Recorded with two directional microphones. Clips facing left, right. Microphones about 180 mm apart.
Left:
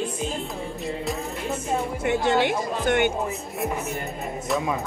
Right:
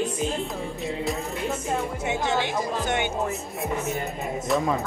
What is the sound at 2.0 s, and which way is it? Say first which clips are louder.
Speech: left 6 dB; 60° left (ahead or behind).